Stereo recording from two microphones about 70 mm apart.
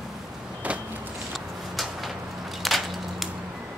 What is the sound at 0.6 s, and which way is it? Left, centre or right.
Vehicle, right.